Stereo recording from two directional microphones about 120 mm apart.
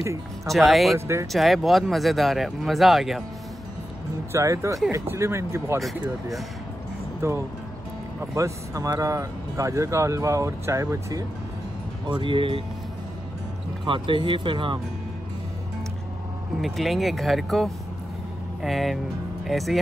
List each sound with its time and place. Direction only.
0.5 s speech: centre (ahead or behind)
0.9 s speech: 25° right (ahead or behind)
1.3 s speech: centre (ahead or behind)
4.3 s speech: 25° right (ahead or behind)
7.2 s speech: 25° right (ahead or behind)
12.1 s speech: 45° right (ahead or behind)
13.8 s speech: 45° right (ahead or behind)
16.6 s speech: centre (ahead or behind)